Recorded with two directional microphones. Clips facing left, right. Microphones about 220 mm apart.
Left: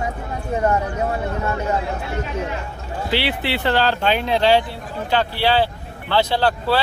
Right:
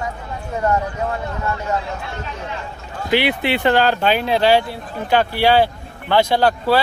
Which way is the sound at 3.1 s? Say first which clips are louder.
Right 5 dB; 15° right (ahead or behind).